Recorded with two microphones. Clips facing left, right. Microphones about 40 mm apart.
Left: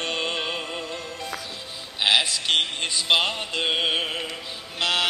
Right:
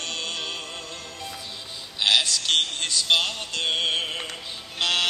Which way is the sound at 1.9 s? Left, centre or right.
Centre.